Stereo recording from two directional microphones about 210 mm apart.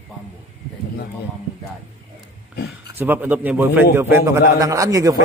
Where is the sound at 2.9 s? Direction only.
10° right (ahead or behind).